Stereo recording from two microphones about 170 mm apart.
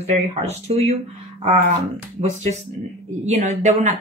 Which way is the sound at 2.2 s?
40° right (ahead or behind).